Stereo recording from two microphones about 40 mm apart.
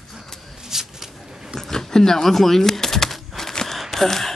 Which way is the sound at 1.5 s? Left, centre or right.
Centre.